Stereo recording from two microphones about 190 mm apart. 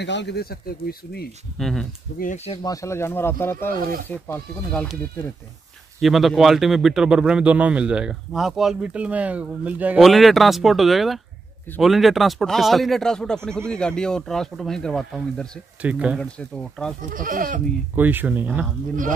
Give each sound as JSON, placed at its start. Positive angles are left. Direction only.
{"t": 0.0, "sound": "speech", "side_deg": 65}
{"t": 1.6, "sound": "a man's voice", "side_deg": 0}
{"t": 2.1, "sound": "speech", "side_deg": 40}
{"t": 2.6, "sound": "a man's voice", "side_deg": 15}
{"t": 5.9, "sound": "a man's voice", "side_deg": 0}
{"t": 16.2, "sound": "a man's voice", "side_deg": 5}
{"t": 17.1, "sound": "speech", "side_deg": -45}
{"t": 17.9, "sound": "speech", "side_deg": -10}